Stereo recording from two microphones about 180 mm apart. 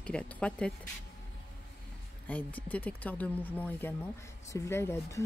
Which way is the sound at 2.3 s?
10° left (ahead or behind).